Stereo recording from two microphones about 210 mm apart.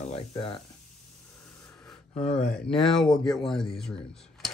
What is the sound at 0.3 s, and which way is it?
Speech, 25° left (ahead or behind).